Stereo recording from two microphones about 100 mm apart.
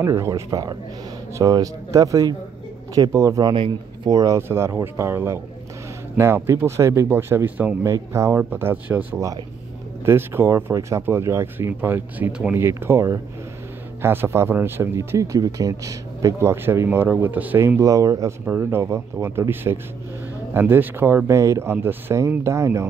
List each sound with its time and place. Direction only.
0.0 s speech: 30° right (ahead or behind)
3.5 s speech: 55° right (ahead or behind)
4.1 s speech: 35° right (ahead or behind); by 7.7 s 15° right (ahead or behind)
7.8 s speech: 30° right (ahead or behind); by 12.5 s 10° right (ahead or behind)
12.5 s speech: 25° right (ahead or behind)
18.4 s speech: 25° right (ahead or behind)